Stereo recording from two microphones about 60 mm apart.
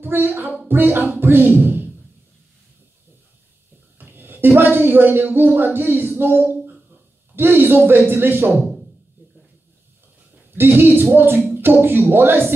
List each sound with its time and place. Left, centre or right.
0.0 s speech: right
4.0 s speech: right
10.5 s speech: right